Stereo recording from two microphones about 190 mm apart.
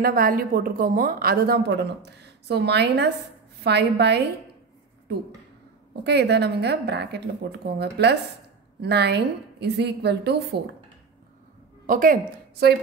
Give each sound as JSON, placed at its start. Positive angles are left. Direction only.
{"t": 0.0, "sound": "a woman's voice", "side_deg": -50}
{"t": 6.0, "sound": "a woman's voice", "side_deg": -60}
{"t": 11.8, "sound": "a woman's voice", "side_deg": -45}